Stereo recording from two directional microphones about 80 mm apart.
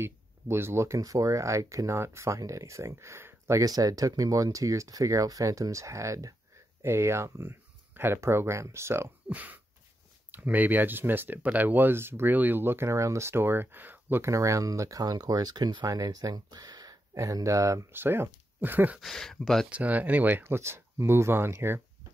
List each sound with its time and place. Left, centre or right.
0.0 s speech: right
9.3 s speech: right
14.2 s speech: right
17.1 s speech: right
17.9 s speech: right
18.9 s speech: centre
19.7 s speech: centre
20.4 s speech: right